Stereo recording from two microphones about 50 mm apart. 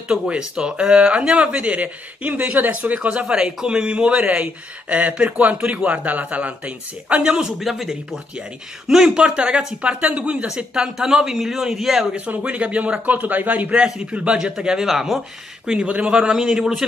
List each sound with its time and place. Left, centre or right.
0.1 s speech: centre
9.0 s speech: right
10.4 s speech: centre
12.3 s a man's voice: right
13.7 s speech: centre
14.9 s speech: centre
15.6 s speech: centre